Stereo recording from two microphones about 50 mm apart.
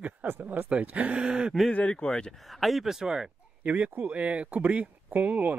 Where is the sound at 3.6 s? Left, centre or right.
Right.